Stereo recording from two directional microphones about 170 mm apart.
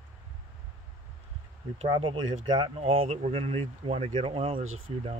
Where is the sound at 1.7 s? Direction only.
30° right (ahead or behind).